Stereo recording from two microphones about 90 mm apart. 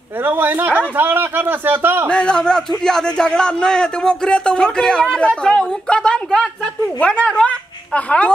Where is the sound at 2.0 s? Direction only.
10° left (ahead or behind).